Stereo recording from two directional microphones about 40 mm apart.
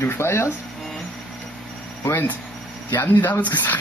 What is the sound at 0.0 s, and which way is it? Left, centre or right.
Speech, left.